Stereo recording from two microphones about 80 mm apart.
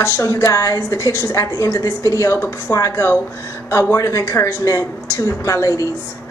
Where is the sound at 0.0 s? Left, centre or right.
Left.